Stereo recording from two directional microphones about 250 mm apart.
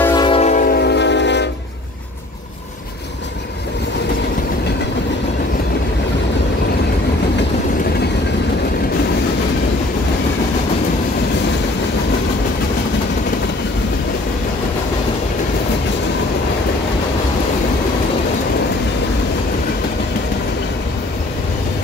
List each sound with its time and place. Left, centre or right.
0.0 s music: centre; by 1.5 s left